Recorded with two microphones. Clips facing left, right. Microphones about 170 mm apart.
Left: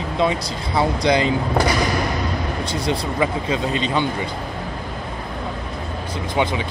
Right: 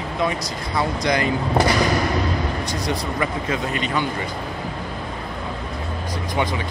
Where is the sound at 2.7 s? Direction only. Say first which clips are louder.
Left 2 dB; 25° left (ahead or behind).